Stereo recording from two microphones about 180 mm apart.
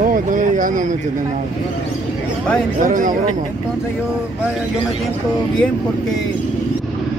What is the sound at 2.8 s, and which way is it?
Speech, 45° right (ahead or behind).